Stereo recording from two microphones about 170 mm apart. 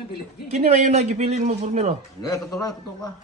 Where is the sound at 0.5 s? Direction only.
40° right (ahead or behind).